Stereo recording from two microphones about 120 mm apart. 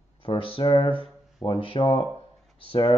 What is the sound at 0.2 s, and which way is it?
Speech, 45° left (ahead or behind).